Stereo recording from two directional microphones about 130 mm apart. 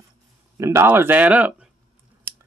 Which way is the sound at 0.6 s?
20° right (ahead or behind).